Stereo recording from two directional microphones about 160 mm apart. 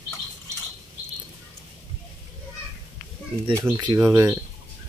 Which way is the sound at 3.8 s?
20° right (ahead or behind).